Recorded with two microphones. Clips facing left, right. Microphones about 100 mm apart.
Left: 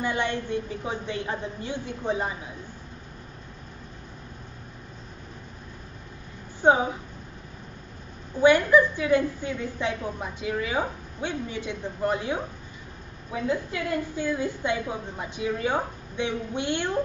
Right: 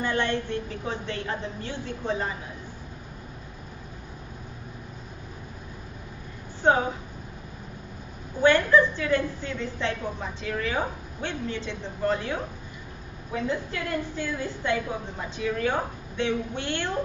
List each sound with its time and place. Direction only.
0.0 s a woman's voice: 15° left (ahead or behind)
6.6 s a woman's voice: 15° left (ahead or behind)
8.4 s a woman's voice: 15° left (ahead or behind)